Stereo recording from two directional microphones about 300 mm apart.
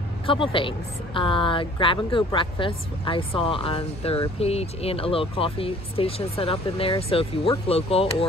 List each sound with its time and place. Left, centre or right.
0.3 s speech: centre